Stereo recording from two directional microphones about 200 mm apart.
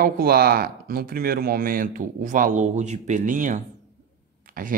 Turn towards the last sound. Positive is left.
turn(degrees=-45)  # may be behind; listen again after turning